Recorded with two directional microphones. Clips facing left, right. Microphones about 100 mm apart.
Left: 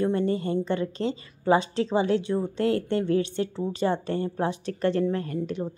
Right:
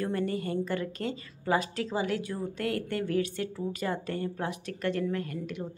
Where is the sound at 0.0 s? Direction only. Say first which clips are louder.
Left 6 dB; 25° left (ahead or behind).